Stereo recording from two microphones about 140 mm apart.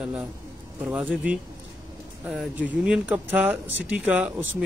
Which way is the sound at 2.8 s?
5° right (ahead or behind).